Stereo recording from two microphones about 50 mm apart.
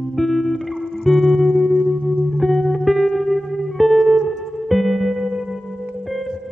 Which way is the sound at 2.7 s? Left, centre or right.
Centre.